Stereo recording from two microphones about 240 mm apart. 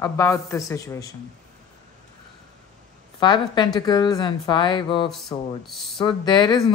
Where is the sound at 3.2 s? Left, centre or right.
Centre.